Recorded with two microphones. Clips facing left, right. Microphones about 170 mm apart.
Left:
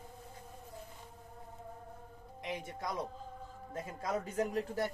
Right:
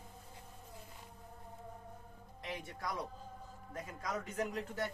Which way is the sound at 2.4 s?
20° left (ahead or behind).